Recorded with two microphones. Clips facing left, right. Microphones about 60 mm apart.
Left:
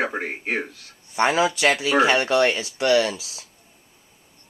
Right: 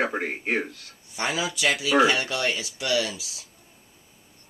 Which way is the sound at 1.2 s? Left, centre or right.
Left.